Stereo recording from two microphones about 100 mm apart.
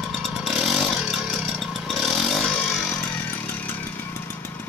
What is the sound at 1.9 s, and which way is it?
Motorcycle, centre (ahead or behind).